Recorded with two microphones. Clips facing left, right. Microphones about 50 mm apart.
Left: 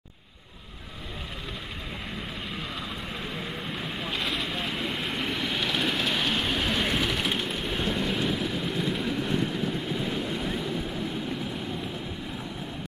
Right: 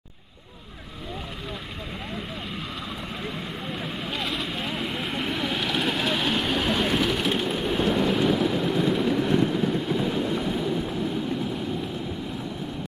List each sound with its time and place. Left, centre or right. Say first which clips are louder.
3.6 s vehicle: right 2 dB; centre
10.0 s vehicle: right 4 dB; centre